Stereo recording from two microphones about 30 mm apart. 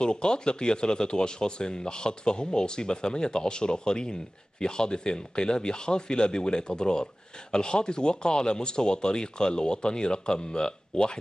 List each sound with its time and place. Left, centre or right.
0.0 s speech: left